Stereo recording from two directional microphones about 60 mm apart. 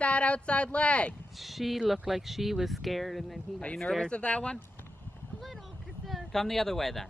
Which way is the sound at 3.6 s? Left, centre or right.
Centre.